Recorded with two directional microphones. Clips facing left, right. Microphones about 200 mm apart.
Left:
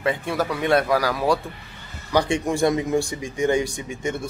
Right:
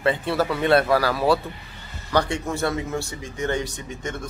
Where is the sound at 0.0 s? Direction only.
10° left (ahead or behind).